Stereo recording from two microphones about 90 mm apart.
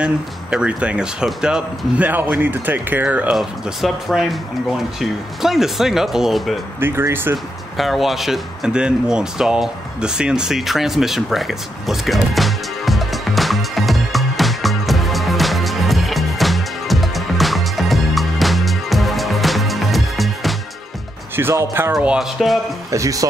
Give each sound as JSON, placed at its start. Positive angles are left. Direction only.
{"t": 0.0, "sound": "speech", "side_deg": -10}
{"t": 3.3, "sound": "speech", "side_deg": -5}
{"t": 5.4, "sound": "speech", "side_deg": -5}
{"t": 6.8, "sound": "speech", "side_deg": -25}
{"t": 7.7, "sound": "a sound", "side_deg": 0}
{"t": 21.4, "sound": "speech", "side_deg": -25}
{"t": 22.4, "sound": "speech", "side_deg": 5}
{"t": 22.8, "sound": "speech", "side_deg": -40}